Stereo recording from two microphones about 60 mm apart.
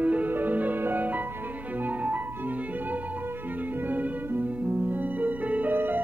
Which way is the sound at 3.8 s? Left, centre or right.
Right.